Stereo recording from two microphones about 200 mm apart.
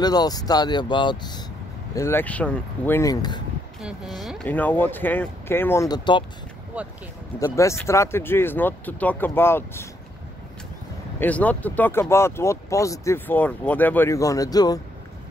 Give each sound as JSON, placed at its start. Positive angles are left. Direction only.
{"t": 0.0, "sound": "speech", "side_deg": 20}
{"t": 2.0, "sound": "speech", "side_deg": 10}
{"t": 3.8, "sound": "speech", "side_deg": 0}
{"t": 7.5, "sound": "speech", "side_deg": 15}
{"t": 11.1, "sound": "speech", "side_deg": 5}